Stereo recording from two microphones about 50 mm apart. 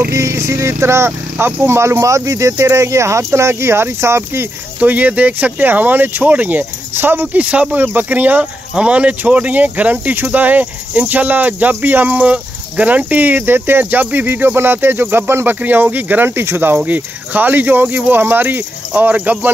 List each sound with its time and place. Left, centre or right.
0.1 s speech: right
4.7 s speech: right
7.3 s speech: right
15.6 s speech: right
16.3 s speech: right
16.7 s speech: right